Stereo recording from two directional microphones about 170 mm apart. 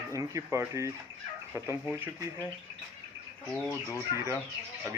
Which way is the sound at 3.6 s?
15° left (ahead or behind).